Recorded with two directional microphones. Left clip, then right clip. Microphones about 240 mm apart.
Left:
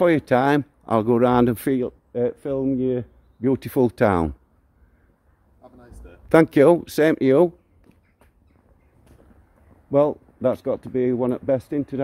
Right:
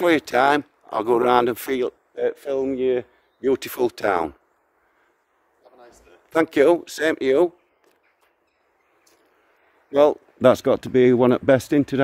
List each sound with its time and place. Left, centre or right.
0.0 s speech: centre
5.6 s a sound: centre
6.8 s speech: centre
9.9 s speech: right